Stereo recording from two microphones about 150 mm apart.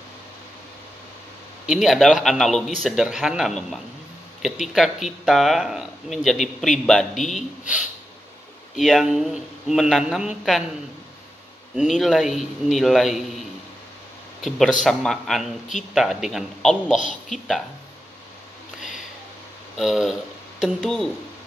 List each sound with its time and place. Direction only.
1.7 s speech: centre (ahead or behind)
11.7 s speech: 5° right (ahead or behind)
14.4 s speech: centre (ahead or behind)
19.8 s speech: centre (ahead or behind)